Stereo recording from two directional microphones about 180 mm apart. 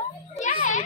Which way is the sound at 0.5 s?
45° left (ahead or behind).